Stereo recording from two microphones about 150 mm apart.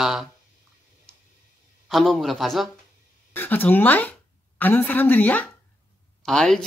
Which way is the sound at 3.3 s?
10° left (ahead or behind).